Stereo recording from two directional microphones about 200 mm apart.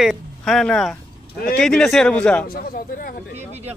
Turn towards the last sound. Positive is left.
turn(degrees=45)  # may be behind; listen again after turning